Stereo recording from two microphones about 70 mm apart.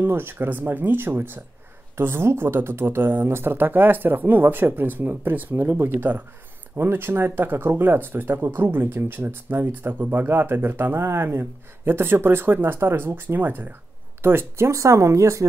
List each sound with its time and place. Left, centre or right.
0.0 s speech: right
14.7 s speech: right